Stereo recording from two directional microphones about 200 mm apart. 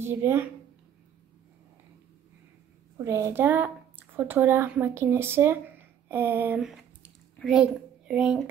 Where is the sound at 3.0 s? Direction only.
15° right (ahead or behind).